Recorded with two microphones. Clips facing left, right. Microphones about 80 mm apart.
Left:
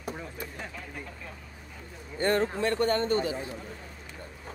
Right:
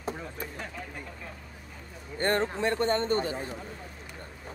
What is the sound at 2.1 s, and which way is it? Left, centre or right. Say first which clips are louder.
Speech: left 1 dB; right.